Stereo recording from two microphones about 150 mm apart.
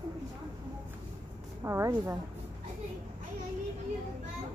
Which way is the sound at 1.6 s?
20° right (ahead or behind).